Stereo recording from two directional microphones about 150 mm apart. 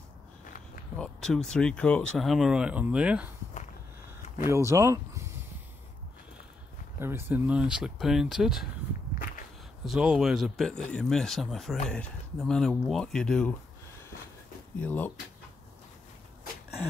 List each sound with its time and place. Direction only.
0.9 s speech: 5° left (ahead or behind)
4.5 s speech: 20° right (ahead or behind)
7.0 s speech: 15° right (ahead or behind)
9.8 s speech: 5° right (ahead or behind)
14.8 s speech: 10° left (ahead or behind)